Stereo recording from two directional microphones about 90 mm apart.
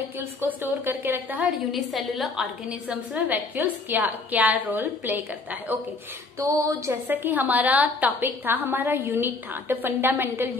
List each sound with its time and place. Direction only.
0.2 s a woman's voice: 25° right (ahead or behind)
1.7 s a woman's voice: centre (ahead or behind)
2.9 s a woman's voice: 20° right (ahead or behind)
6.4 s music: 40° right (ahead or behind)
7.1 s a woman's voice: 20° right (ahead or behind)